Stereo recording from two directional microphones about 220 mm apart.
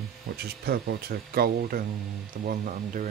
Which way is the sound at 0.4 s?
45° right (ahead or behind).